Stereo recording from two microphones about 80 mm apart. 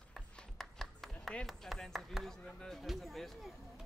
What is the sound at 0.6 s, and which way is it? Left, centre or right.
Speech, centre.